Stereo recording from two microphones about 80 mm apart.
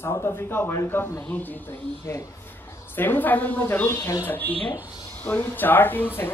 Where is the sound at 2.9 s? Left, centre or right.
Left.